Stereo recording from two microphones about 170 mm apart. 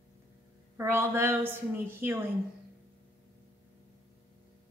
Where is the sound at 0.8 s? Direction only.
15° right (ahead or behind).